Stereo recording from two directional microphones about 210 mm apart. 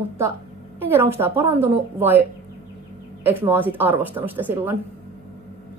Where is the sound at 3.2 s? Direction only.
10° right (ahead or behind).